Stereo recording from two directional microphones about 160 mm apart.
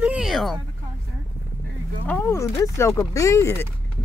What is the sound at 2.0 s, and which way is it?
Speech, 10° left (ahead or behind).